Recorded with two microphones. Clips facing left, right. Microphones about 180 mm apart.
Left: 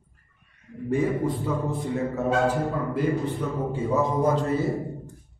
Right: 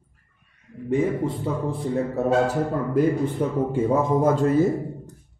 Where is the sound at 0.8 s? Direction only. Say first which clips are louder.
Right 1 dB; 20° right (ahead or behind).